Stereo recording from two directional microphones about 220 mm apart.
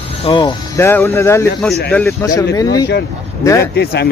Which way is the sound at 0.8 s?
10° left (ahead or behind).